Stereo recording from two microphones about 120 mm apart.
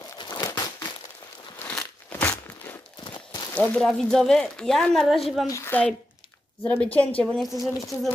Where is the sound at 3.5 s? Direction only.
10° left (ahead or behind).